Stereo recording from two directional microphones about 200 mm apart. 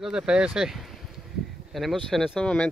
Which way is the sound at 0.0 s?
5° right (ahead or behind).